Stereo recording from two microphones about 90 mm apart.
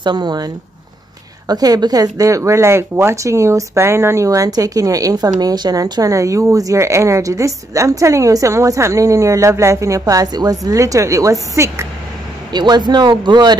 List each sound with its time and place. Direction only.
0.0 s speech: 55° right (ahead or behind)
1.5 s speech: 45° right (ahead or behind)
12.5 s speech: 55° right (ahead or behind)